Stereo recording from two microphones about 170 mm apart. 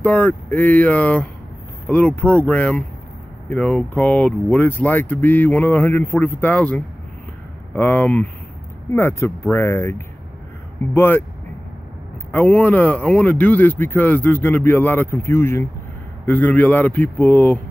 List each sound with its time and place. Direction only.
0.0 s speech: 10° left (ahead or behind)
12.3 s speech: 10° left (ahead or behind)